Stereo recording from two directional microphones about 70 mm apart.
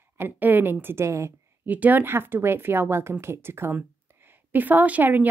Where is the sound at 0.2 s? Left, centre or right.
Right.